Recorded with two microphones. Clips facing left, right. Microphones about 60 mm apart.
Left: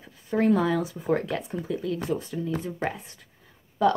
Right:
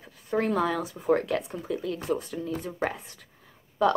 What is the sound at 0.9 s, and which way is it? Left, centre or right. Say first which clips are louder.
A woman's voice: right 2 dB; centre.